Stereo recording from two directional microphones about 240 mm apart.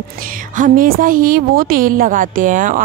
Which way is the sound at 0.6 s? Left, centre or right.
Right.